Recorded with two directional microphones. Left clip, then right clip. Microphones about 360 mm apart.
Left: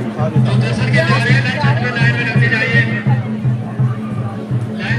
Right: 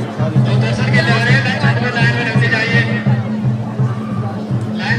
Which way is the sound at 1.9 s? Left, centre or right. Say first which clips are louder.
Right 1 dB; right.